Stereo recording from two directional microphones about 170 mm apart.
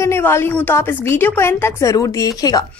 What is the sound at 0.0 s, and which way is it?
A woman's voice, 15° left (ahead or behind).